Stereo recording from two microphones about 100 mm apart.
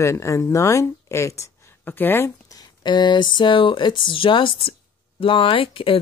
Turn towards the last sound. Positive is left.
turn(degrees=65)  # may be behind; listen again after turning